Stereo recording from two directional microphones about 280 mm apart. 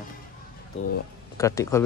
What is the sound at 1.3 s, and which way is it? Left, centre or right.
Speech, centre.